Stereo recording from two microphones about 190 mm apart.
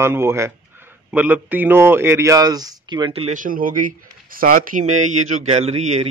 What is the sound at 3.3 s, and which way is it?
Speech, 45° right (ahead or behind).